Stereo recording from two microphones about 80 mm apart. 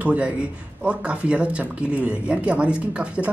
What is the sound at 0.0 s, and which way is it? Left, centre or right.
Speech, centre.